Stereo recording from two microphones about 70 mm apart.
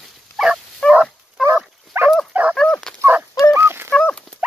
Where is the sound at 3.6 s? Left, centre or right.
Right.